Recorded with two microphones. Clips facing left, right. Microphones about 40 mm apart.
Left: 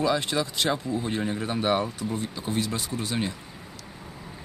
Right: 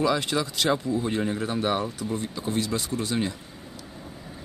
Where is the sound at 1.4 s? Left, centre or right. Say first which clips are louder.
Left 4 dB; left.